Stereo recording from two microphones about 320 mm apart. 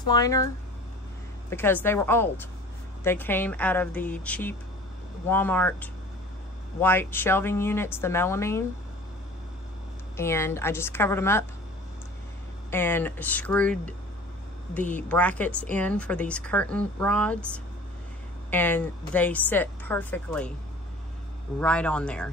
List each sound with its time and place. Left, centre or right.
0.0 s a woman's voice: centre
1.5 s a woman's voice: centre
10.1 s a woman's voice: centre
12.7 s a woman's voice: centre
15.0 s a woman's voice: centre
21.5 s a woman's voice: centre